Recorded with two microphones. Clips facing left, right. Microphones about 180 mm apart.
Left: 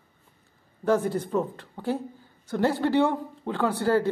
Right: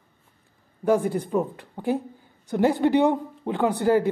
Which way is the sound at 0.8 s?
15° right (ahead or behind).